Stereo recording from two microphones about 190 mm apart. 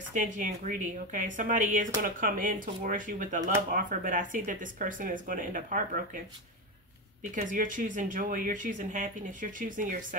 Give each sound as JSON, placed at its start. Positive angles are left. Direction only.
{"t": 0.1, "sound": "speech", "side_deg": -40}
{"t": 7.3, "sound": "speech", "side_deg": -45}